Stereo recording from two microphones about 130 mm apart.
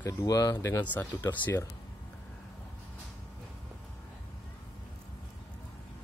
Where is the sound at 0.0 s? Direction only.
30° left (ahead or behind).